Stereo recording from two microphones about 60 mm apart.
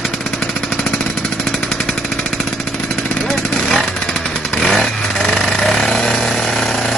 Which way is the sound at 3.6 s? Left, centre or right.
Centre.